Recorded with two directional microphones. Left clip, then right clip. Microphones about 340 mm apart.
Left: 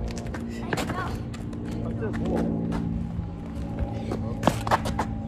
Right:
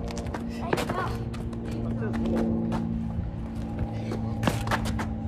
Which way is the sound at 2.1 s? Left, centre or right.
Centre.